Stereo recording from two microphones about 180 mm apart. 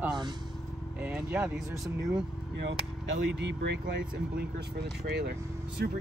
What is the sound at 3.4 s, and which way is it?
Speech, 70° right (ahead or behind).